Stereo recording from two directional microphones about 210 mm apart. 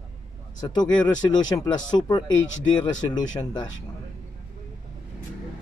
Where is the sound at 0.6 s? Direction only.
20° left (ahead or behind).